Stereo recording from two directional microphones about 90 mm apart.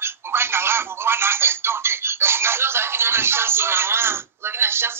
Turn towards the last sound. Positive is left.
turn(degrees=-25)  # may be behind; listen again after turning